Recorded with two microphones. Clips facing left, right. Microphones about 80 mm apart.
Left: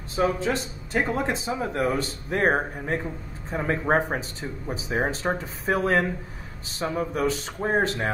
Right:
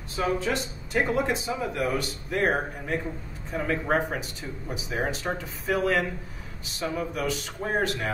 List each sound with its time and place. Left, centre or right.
0.1 s speech: left